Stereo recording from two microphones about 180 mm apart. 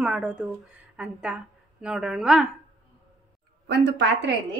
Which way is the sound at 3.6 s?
70° right (ahead or behind).